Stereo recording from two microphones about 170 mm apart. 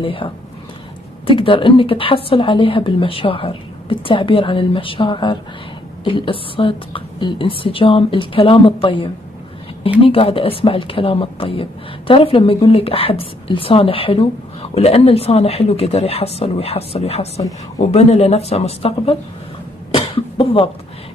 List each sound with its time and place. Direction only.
0.0 s a woman's voice: 30° left (ahead or behind)
19.9 s cough: 30° left (ahead or behind)